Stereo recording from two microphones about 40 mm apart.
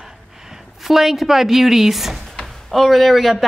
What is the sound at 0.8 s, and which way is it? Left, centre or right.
A woman's voice, centre.